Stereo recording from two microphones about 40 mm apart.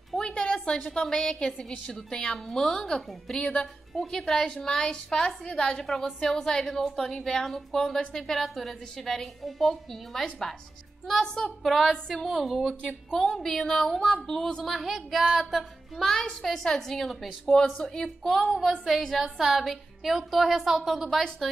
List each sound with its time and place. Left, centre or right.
0.2 s a sound: left
1.1 s a woman's voice: centre
4.5 s a woman's voice: left; by 10.2 s centre
11.2 s a woman's voice: centre
11.6 s a woman's voice: centre
11.9 s a woman's voice: centre
12.3 s a woman's voice: centre
14.6 s a woman's voice: centre
16.1 s a woman's voice: centre
17.7 s a woman's voice: centre
18.0 s a woman's voice: centre